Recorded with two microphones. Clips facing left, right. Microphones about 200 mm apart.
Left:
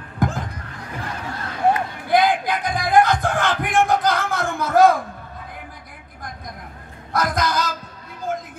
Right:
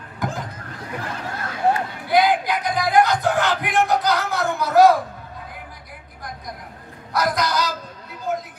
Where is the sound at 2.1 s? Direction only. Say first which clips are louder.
Even; 50° left (ahead or behind).